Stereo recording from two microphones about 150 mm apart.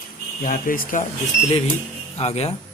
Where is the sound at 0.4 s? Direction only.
65° left (ahead or behind).